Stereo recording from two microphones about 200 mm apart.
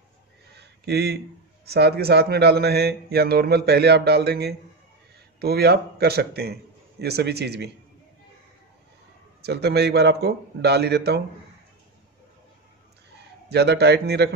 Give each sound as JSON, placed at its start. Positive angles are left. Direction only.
{"t": 0.6, "sound": "a sound", "side_deg": -55}
{"t": 1.7, "sound": "a man's voice", "side_deg": -55}
{"t": 9.4, "sound": "a man's voice", "side_deg": -55}
{"t": 13.5, "sound": "a man's voice", "side_deg": -55}